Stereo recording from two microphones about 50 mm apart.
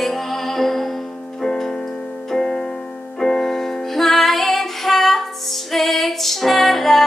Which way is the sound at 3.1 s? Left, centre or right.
Centre.